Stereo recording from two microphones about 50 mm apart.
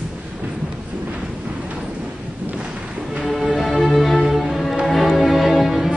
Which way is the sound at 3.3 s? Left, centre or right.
Centre.